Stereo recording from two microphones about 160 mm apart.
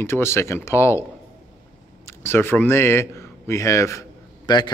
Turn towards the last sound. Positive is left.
turn(degrees=25)  # may be behind; listen again after turning